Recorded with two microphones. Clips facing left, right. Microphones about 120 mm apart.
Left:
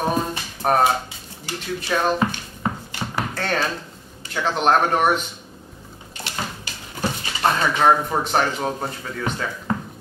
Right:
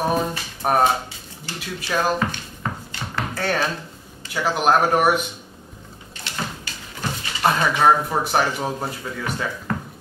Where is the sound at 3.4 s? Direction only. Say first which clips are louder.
Right 2 dB; 5° right (ahead or behind).